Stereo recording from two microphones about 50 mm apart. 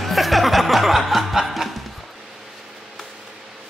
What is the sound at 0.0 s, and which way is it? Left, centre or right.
Music, centre.